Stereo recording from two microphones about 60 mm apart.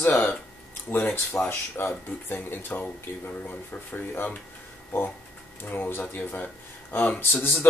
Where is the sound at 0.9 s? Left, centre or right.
Left.